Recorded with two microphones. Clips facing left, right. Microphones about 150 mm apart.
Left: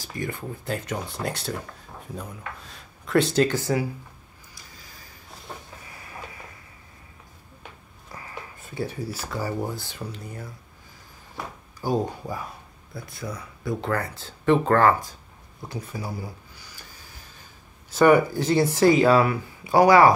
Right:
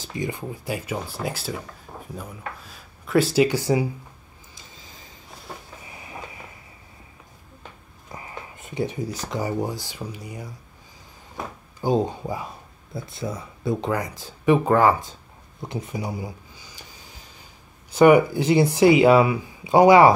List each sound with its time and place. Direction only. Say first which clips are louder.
0.0 s speech: right 2 dB; 20° right (ahead or behind)
5.9 s train: right 4 dB; 20° right (ahead or behind)
8.1 s a sound: right 2 dB; 20° right (ahead or behind)
9.2 s speech: right 3 dB; 20° right (ahead or behind)
11.8 s speech: right 3 dB; 20° right (ahead or behind)
17.9 s speech: right 3 dB; 15° right (ahead or behind)